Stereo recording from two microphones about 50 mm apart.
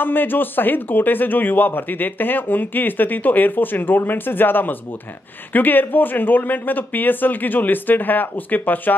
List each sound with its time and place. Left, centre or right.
0.0 s speech: left